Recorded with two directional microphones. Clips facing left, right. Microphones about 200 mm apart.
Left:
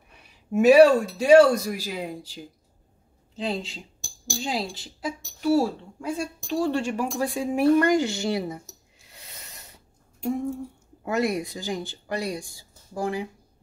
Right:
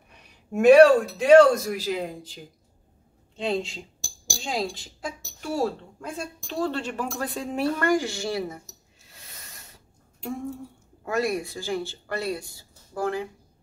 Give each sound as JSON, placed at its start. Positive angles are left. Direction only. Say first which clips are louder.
{"t": 0.5, "sound": "a woman's voice", "louder": "right 1 dB", "side_deg": 5}
{"t": 3.3, "sound": "a woman's voice", "louder": "right 2 dB", "side_deg": 0}
{"t": 11.1, "sound": "a woman's voice", "louder": "left 1 dB", "side_deg": 20}